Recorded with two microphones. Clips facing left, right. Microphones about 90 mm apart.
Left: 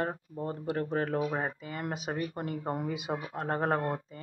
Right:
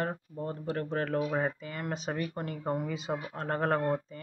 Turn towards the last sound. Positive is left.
turn(degrees=20)  # may be behind; listen again after turning